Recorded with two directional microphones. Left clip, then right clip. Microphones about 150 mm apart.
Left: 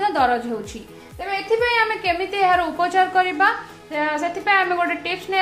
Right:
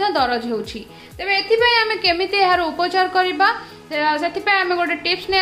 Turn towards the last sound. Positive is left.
turn(degrees=-25)  # may be behind; listen again after turning